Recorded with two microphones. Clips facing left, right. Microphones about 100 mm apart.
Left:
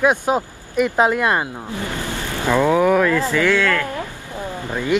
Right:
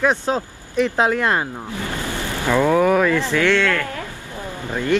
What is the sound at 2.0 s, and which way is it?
Vehicle, 15° right (ahead or behind).